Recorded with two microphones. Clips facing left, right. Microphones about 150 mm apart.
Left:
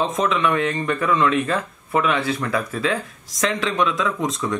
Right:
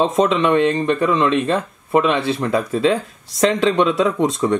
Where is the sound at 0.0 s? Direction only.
30° right (ahead or behind).